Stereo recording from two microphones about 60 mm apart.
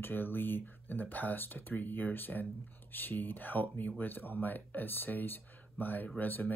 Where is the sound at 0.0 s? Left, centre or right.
Left.